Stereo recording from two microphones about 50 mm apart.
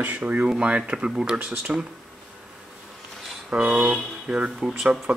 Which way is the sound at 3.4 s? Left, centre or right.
Right.